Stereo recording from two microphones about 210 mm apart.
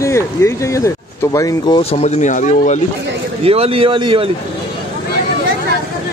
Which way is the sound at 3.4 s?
25° right (ahead or behind).